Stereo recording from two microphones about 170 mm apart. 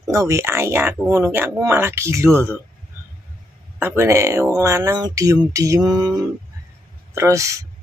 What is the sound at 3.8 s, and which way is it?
Speech, 15° right (ahead or behind).